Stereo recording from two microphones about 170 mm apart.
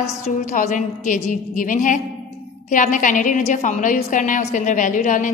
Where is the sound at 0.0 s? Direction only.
45° left (ahead or behind).